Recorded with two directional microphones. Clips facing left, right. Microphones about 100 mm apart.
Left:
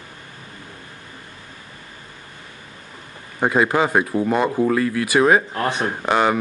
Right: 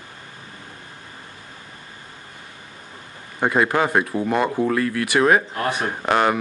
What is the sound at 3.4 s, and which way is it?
Speech, 10° left (ahead or behind).